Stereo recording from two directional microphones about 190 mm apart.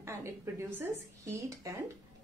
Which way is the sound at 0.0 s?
15° right (ahead or behind).